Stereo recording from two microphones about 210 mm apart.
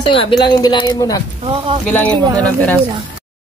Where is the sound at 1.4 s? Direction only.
25° right (ahead or behind).